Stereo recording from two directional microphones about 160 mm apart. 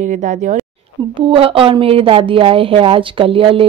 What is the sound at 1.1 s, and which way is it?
Speech, 35° right (ahead or behind).